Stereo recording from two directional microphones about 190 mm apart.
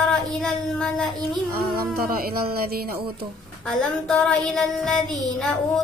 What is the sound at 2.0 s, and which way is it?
Speech, 50° right (ahead or behind).